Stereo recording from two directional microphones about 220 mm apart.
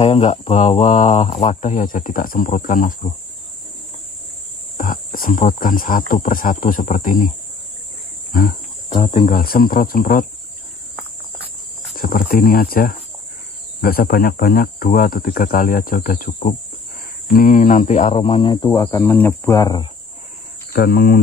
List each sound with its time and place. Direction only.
0.0 s speech: 30° left (ahead or behind)
4.7 s speech: 40° left (ahead or behind)
12.0 s speech: 40° left (ahead or behind); by 19.9 s 20° left (ahead or behind)
20.7 s speech: 45° left (ahead or behind)